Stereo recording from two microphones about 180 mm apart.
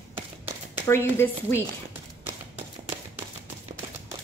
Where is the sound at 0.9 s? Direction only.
15° left (ahead or behind).